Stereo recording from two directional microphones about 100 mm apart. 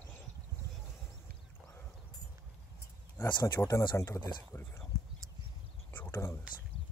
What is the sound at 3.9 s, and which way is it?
Speech, 25° left (ahead or behind).